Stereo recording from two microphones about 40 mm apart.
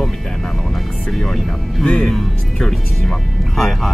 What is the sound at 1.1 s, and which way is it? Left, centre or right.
Speech, centre.